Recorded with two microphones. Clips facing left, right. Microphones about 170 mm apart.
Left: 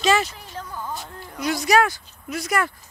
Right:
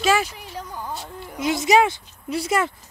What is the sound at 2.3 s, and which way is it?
Speech, 30° right (ahead or behind).